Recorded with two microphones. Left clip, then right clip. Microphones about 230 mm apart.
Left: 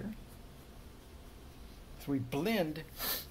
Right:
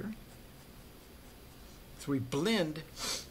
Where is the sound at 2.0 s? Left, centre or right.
Right.